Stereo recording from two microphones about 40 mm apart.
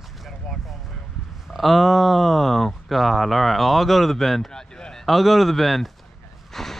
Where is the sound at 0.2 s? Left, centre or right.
Centre.